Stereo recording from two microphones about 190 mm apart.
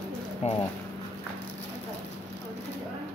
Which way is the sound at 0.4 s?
35° left (ahead or behind).